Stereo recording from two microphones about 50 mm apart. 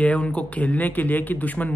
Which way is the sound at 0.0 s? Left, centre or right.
Left.